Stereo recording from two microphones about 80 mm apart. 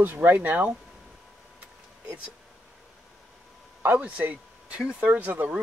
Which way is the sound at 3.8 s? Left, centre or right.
Right.